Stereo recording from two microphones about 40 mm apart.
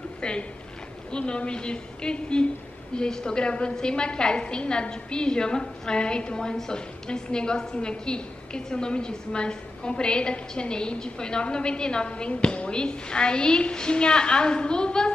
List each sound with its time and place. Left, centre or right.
0.2 s a woman's voice: left